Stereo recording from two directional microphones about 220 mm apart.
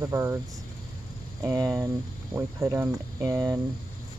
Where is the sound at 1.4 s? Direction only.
15° right (ahead or behind).